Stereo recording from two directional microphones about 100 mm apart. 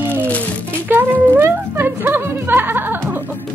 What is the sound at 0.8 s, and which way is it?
Music, 20° right (ahead or behind).